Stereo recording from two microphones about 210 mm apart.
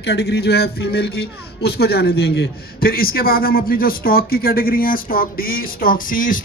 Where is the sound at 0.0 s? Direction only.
55° left (ahead or behind).